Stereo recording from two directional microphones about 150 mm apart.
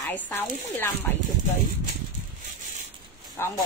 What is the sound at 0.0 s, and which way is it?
Speech, 15° left (ahead or behind).